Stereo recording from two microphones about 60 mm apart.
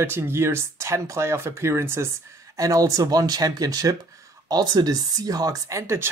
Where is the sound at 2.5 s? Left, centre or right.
Right.